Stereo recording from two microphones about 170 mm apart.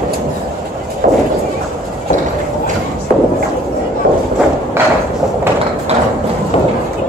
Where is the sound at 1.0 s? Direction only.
60° right (ahead or behind).